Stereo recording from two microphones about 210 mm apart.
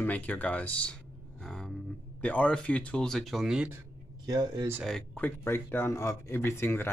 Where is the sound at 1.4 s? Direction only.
5° left (ahead or behind).